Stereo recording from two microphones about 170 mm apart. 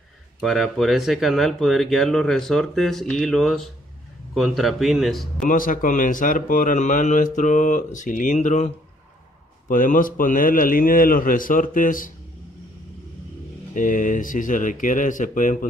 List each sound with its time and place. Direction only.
0.4 s speech: centre (ahead or behind)
5.4 s a man's voice: 50° left (ahead or behind)
13.7 s a man's voice: 50° left (ahead or behind)